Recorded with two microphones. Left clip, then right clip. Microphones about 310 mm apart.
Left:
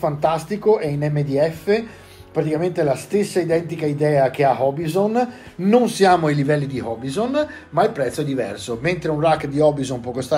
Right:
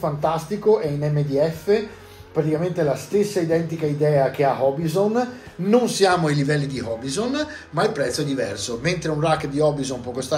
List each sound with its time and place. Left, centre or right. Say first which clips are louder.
0.0 s a man's voice: left 3 dB; left